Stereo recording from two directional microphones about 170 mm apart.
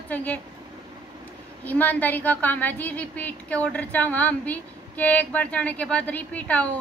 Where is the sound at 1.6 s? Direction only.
10° left (ahead or behind).